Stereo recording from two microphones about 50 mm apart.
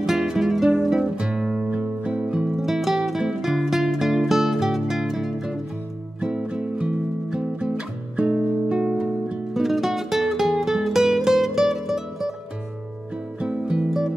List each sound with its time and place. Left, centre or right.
0.0 s music: centre
2.4 s music: centre
8.2 s music: right
9.5 s music: centre
13.4 s music: centre